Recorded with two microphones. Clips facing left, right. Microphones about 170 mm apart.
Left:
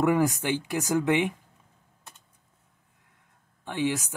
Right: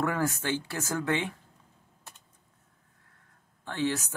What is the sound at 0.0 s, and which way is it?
Speech, 15° left (ahead or behind).